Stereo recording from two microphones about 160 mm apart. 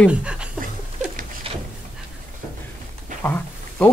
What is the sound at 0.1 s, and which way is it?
Speech, 5° right (ahead or behind).